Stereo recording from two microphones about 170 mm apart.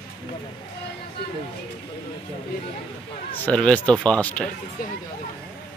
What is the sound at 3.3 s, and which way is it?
Speech, 5° left (ahead or behind).